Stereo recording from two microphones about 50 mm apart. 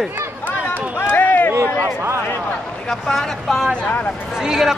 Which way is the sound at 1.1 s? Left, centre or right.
Left.